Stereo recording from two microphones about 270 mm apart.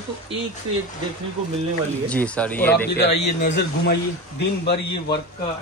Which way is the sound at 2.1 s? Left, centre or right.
Centre.